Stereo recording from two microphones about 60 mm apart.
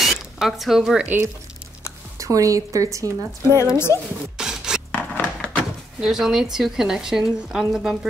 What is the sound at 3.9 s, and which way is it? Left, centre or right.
Speech, left.